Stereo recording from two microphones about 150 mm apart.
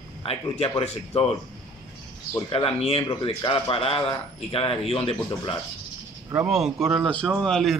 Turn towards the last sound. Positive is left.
turn(degrees=0)  # may be behind; listen again after turning